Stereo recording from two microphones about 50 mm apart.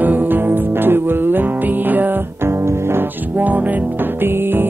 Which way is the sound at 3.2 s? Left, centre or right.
Right.